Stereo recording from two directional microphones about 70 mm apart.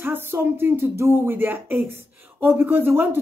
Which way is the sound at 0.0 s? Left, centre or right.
Right.